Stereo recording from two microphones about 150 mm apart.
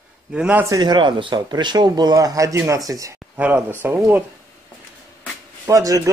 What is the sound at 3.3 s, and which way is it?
Speech, 10° right (ahead or behind).